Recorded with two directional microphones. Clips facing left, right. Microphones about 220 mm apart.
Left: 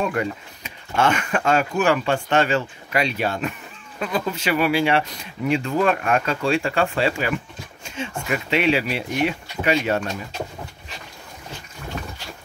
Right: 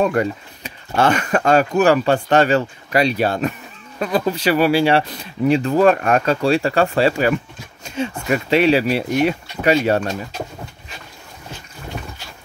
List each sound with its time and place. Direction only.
0.0 s speech: 40° right (ahead or behind)